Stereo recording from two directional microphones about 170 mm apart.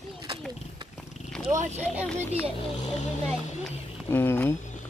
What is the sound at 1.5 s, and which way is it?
Speech, 45° right (ahead or behind).